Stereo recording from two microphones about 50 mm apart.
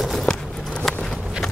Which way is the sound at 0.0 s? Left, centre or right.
Centre.